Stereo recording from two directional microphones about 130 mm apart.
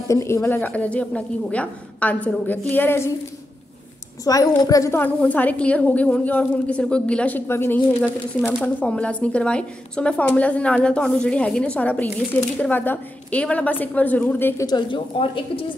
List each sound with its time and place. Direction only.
0.1 s a woman's voice: 20° left (ahead or behind)
4.2 s a woman's voice: 25° left (ahead or behind)
14.7 s a woman's voice: 40° left (ahead or behind)